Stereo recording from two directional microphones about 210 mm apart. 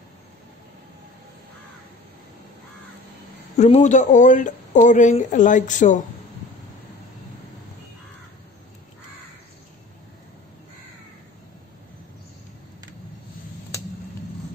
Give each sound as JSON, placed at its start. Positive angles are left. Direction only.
{"t": 3.5, "sound": "speech", "side_deg": 30}